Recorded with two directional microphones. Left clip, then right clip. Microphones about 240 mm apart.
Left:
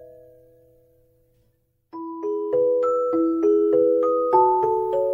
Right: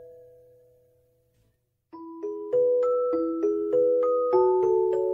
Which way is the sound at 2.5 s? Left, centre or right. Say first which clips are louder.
Left 2 dB; centre.